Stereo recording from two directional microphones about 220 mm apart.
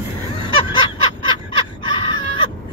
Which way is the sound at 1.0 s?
20° left (ahead or behind).